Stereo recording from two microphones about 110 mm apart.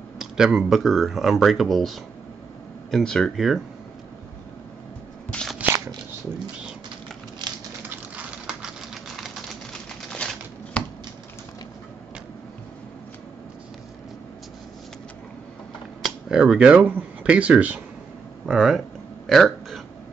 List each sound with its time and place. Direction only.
0.2 s speech: 5° right (ahead or behind)
5.3 s crunch: 5° left (ahead or behind)
7.4 s a sound: 40° right (ahead or behind)
7.9 s typewriter: 10° right (ahead or behind); by 10.8 s 10° left (ahead or behind)
16.3 s speech: 5° right (ahead or behind)
19.2 s burping: centre (ahead or behind)